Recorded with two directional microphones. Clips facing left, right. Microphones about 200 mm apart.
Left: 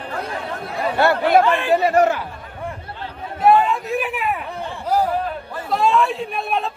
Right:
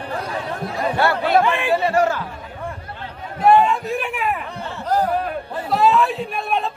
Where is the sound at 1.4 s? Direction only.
15° right (ahead or behind).